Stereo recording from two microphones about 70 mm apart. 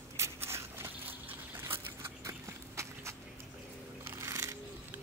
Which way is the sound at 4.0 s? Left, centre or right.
Right.